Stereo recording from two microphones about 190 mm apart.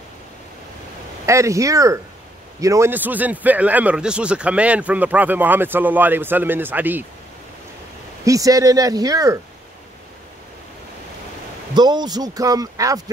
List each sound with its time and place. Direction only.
1.2 s speech: 15° right (ahead or behind)
8.3 s speech: 20° right (ahead or behind)
11.7 s speech: 20° right (ahead or behind)